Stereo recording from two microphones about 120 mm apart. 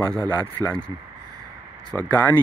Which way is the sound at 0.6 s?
10° left (ahead or behind).